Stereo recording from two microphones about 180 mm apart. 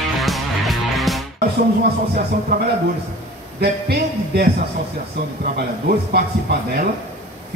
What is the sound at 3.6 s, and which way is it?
Music, 65° right (ahead or behind).